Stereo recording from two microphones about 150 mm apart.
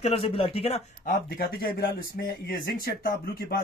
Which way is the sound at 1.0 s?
80° left.